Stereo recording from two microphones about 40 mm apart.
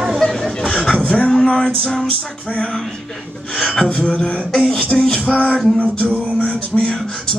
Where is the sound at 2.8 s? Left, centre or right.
Centre.